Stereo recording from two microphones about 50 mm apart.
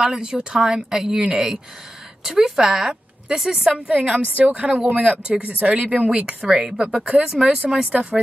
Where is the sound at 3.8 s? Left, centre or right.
Right.